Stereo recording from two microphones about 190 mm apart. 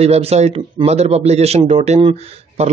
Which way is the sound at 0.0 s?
35° right (ahead or behind).